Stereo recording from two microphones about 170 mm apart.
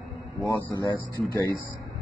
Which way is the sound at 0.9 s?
20° left (ahead or behind).